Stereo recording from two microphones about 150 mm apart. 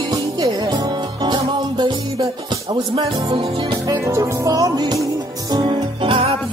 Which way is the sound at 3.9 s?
20° right (ahead or behind).